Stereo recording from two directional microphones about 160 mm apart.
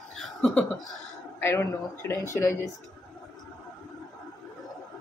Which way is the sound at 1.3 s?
15° left (ahead or behind).